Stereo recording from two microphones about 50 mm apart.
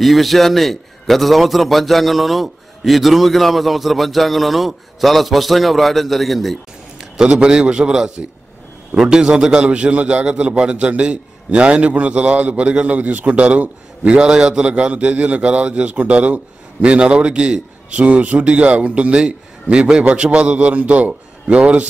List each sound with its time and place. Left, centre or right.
0.0 s a man's voice: centre
7.2 s a man's voice: centre